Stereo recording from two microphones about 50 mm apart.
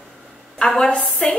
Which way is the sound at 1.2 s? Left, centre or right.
Centre.